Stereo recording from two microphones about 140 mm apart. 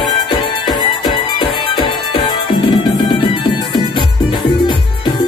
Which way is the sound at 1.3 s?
35° left (ahead or behind).